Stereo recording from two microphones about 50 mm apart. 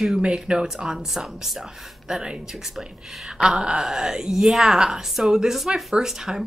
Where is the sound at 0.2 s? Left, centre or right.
Centre.